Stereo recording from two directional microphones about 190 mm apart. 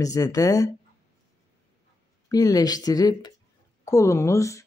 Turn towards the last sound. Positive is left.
turn(degrees=15)  # may be behind; listen again after turning